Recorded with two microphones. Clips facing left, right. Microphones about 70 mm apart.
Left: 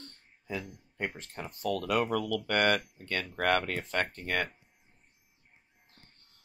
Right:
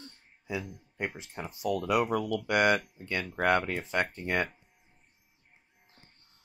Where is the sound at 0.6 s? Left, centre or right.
Centre.